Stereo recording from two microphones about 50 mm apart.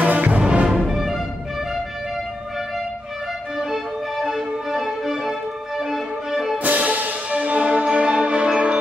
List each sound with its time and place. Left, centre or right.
0.0 s music: right
0.7 s music: centre
3.5 s music: centre
6.6 s music: right